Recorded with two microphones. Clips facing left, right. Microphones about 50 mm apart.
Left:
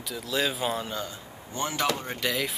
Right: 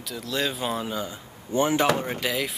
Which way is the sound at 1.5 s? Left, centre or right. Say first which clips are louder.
Right 7 dB; right.